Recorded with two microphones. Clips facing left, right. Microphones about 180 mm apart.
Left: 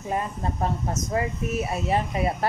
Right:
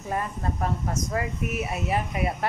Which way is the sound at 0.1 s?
20° left (ahead or behind).